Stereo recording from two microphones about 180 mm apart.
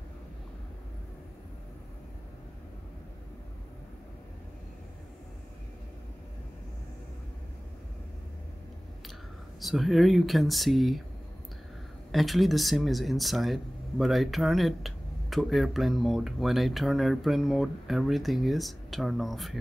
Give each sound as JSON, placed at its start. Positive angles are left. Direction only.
{"t": 9.6, "sound": "speech", "side_deg": 0}
{"t": 12.1, "sound": "speech", "side_deg": 0}